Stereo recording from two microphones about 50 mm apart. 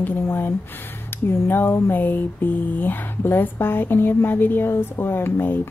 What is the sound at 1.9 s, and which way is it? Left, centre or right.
Speech, left.